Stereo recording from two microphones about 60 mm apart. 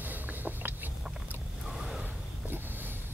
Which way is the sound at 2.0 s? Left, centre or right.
Right.